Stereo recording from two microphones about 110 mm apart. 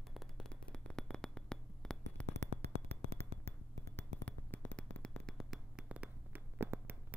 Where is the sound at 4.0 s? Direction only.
15° left (ahead or behind).